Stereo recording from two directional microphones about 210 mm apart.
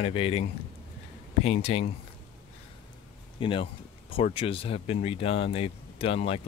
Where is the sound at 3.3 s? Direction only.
25° left (ahead or behind).